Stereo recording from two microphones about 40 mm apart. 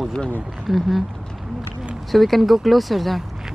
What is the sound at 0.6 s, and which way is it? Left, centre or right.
Speech, centre.